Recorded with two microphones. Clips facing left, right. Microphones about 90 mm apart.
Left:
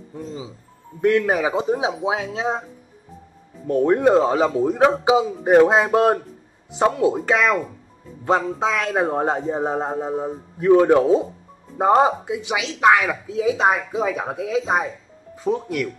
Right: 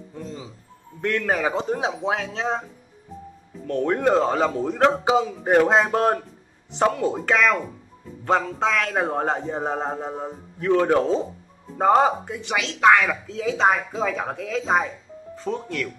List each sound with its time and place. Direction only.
0.1 s speech: 5° left (ahead or behind)
3.6 s speech: 10° left (ahead or behind)